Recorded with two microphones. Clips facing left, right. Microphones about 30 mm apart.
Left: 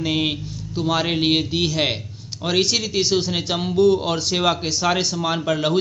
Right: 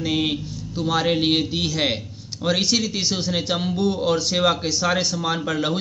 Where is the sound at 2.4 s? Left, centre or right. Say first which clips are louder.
Even; left.